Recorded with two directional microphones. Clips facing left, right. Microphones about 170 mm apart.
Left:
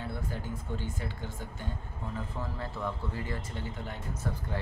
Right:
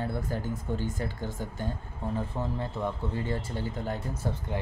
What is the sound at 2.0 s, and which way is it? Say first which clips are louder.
Speech: right 6 dB; 25° right (ahead or behind).